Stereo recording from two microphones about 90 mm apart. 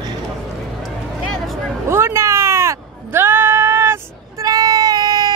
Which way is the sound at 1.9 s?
30° right (ahead or behind).